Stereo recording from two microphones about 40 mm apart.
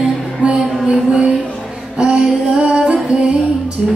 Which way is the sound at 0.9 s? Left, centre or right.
Right.